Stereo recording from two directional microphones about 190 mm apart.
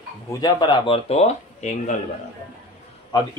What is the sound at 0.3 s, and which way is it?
Speech, 20° left (ahead or behind).